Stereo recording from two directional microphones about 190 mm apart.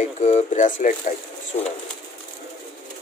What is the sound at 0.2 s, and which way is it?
Speech, 40° left (ahead or behind).